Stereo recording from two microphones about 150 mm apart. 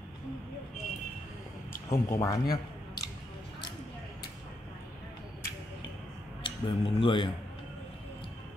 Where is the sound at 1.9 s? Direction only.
20° left (ahead or behind).